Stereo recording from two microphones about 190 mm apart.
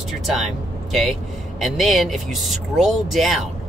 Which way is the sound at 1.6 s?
Centre (ahead or behind).